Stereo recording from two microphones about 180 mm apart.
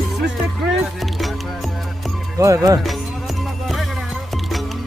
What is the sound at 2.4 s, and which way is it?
Speech, 15° right (ahead or behind).